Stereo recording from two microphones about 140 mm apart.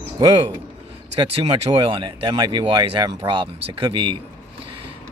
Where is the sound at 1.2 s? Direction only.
40° right (ahead or behind).